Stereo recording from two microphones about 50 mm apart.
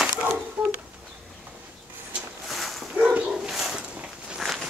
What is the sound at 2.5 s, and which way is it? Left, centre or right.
Dog, centre.